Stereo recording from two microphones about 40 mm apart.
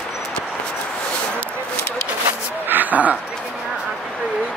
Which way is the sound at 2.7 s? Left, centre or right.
Right.